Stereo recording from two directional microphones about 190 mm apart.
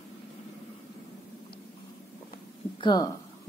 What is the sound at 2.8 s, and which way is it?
Speech, 20° left (ahead or behind).